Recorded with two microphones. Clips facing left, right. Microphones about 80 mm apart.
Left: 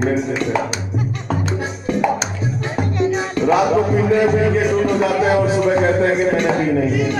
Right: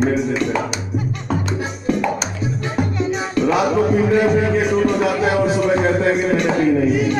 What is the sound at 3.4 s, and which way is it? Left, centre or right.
Speech, centre.